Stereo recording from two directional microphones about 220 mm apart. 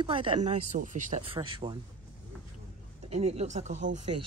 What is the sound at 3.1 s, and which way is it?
Speech, 30° right (ahead or behind).